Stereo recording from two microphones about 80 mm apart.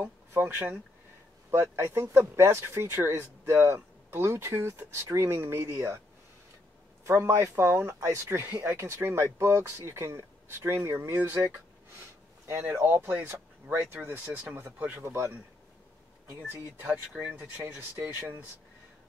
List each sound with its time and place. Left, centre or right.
0.3 s speech: right
7.1 s speech: right; by 15.0 s centre
15.0 s speech: right
17.1 s speech: centre
17.9 s speech: right